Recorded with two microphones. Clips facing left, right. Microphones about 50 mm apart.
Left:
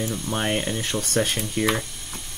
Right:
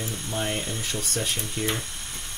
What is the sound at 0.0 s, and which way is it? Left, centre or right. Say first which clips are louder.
Speech: left 4 dB; left.